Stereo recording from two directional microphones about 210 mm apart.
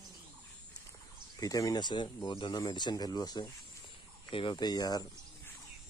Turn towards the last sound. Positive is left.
turn(degrees=15)  # may be behind; listen again after turning